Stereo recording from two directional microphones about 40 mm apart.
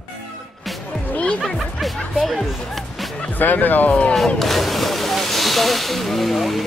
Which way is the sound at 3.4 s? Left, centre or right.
Left.